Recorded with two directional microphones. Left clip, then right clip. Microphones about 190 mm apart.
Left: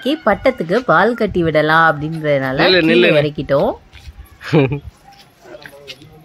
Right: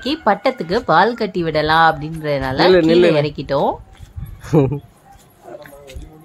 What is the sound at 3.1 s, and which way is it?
Speech, 10° left (ahead or behind).